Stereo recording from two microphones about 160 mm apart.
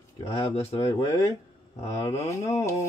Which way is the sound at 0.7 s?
40° left (ahead or behind).